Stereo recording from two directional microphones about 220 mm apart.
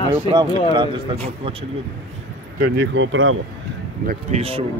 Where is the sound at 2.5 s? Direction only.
50° right (ahead or behind).